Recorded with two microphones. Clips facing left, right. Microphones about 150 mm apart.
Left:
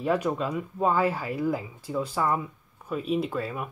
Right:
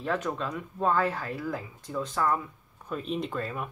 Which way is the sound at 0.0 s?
15° left (ahead or behind).